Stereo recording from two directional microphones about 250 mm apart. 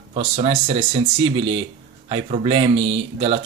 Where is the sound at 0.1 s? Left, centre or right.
Right.